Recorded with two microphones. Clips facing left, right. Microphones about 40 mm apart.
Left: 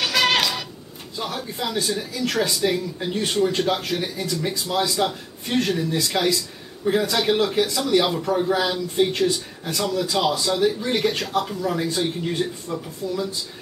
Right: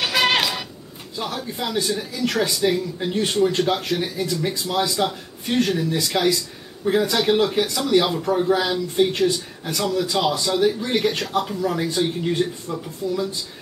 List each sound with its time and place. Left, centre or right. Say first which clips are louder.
0.0 s cat: even; centre
1.1 s a man's voice: right 1 dB; centre